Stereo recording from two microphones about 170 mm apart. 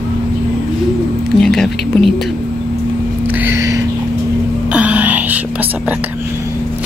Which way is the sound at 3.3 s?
10° right (ahead or behind).